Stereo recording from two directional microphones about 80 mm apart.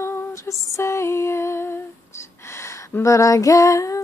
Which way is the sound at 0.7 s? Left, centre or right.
Left.